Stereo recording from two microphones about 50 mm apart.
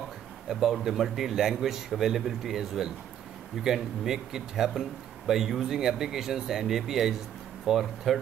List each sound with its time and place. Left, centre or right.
0.5 s speech: centre